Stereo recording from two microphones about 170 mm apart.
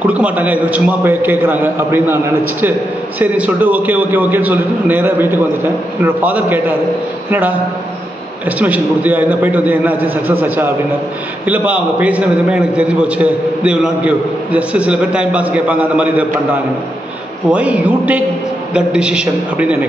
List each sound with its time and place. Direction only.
0.0 s a man's voice: 10° right (ahead or behind)
3.2 s a man's voice: 10° right (ahead or behind)
17.5 s a man's voice: 10° right (ahead or behind)